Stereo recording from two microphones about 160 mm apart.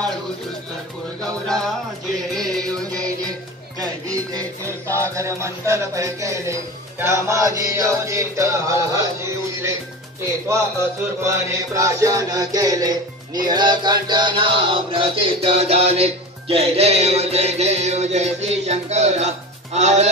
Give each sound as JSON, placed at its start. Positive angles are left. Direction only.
{"t": 1.2, "sound": "music", "side_deg": 5}
{"t": 3.8, "sound": "music", "side_deg": -25}
{"t": 11.2, "sound": "mantra", "side_deg": -20}
{"t": 13.5, "sound": "music", "side_deg": -25}